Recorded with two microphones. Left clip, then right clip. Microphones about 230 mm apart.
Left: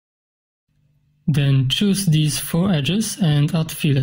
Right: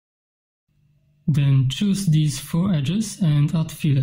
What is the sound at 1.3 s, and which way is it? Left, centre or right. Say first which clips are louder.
Speech: left 5 dB; left.